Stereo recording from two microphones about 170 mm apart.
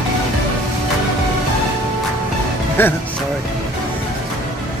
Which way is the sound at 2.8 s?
10° left (ahead or behind).